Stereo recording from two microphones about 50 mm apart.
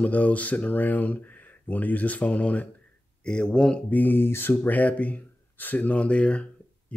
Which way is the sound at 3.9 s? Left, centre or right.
Left.